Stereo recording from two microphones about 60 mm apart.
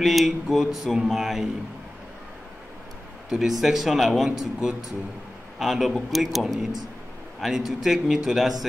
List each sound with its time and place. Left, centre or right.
0.0 s speech: centre
3.3 s a man's voice: centre